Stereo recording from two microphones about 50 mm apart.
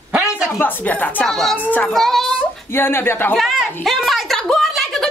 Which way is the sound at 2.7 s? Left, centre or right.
Left.